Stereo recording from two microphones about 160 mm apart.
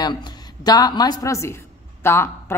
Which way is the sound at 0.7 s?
25° left (ahead or behind).